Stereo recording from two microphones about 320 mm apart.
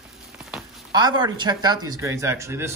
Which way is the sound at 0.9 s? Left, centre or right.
Centre.